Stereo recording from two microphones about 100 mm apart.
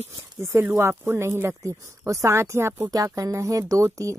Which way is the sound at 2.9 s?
35° right (ahead or behind).